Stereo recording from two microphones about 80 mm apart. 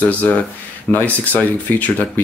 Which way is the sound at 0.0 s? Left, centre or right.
Centre.